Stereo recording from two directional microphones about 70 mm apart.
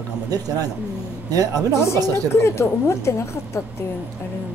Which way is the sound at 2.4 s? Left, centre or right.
Left.